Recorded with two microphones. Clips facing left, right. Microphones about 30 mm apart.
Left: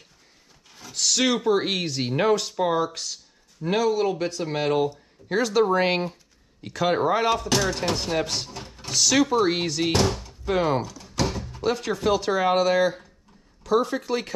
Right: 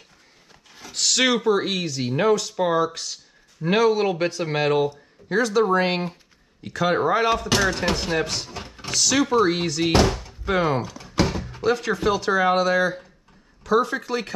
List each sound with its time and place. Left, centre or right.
0.7 s a sound: centre
1.1 s speech: centre
1.5 s speech: centre
2.5 s speech: centre
3.6 s speech: right
4.8 s speech: centre
5.7 s speech: centre
7.2 s speech: centre
8.5 s a sound: centre
8.9 s speech: centre
9.9 s speech: right
10.8 s thunk: right
11.6 s speech: centre